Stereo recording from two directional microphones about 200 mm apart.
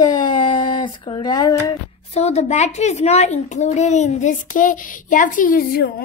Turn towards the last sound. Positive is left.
turn(degrees=50)  # may be behind; listen again after turning